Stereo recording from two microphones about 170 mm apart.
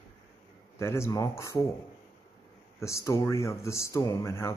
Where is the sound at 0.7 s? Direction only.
15° left (ahead or behind).